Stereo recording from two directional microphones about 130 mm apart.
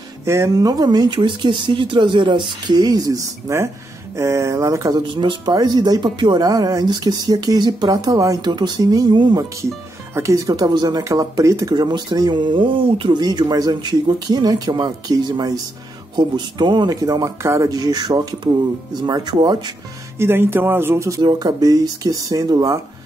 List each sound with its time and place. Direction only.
0.2 s speech: 20° right (ahead or behind)
20.2 s speech: 15° right (ahead or behind)
21.2 s speech: 30° right (ahead or behind)